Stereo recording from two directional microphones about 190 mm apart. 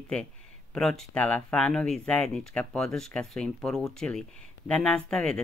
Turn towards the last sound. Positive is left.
turn(degrees=5)  # may be behind; listen again after turning